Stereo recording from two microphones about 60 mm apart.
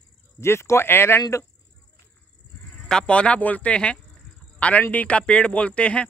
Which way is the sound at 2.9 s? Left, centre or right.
Centre.